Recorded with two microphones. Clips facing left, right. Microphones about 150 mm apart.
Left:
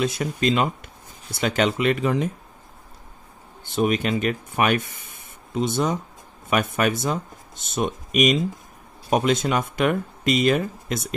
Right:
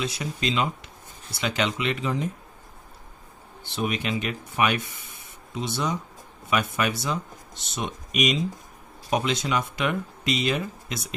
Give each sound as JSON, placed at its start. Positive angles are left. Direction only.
{"t": 0.0, "sound": "speech", "side_deg": 50}
{"t": 3.6, "sound": "speech", "side_deg": 45}
{"t": 4.9, "sound": "spray", "side_deg": 50}
{"t": 6.5, "sound": "speech", "side_deg": 50}